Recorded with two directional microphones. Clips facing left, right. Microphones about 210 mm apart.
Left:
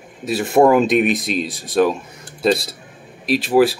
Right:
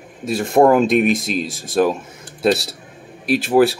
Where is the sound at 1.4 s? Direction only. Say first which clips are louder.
Even; 45° right (ahead or behind).